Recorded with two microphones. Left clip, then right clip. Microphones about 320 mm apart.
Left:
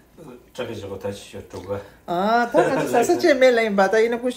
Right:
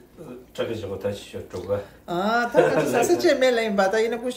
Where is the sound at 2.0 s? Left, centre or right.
Left.